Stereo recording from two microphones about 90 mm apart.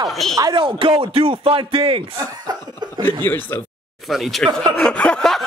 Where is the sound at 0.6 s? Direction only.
75° right (ahead or behind); by 2.0 s 90° right.